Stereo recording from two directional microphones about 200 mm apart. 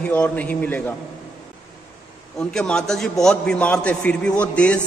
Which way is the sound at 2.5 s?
5° left (ahead or behind).